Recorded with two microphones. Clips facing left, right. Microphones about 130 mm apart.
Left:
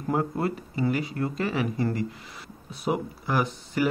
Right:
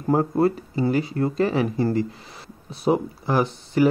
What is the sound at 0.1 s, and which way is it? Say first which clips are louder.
Speech: right 7 dB; 35° right (ahead or behind).